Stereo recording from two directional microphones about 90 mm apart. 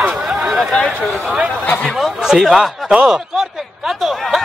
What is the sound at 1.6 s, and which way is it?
Speech, 20° left (ahead or behind).